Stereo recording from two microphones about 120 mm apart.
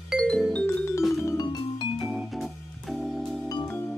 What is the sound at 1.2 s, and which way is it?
Music, 30° left (ahead or behind).